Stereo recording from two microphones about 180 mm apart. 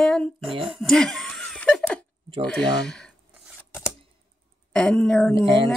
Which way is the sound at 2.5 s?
5° left (ahead or behind).